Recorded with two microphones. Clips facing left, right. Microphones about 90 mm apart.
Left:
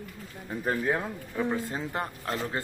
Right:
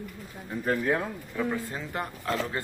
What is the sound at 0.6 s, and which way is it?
Speech, 15° left (ahead or behind).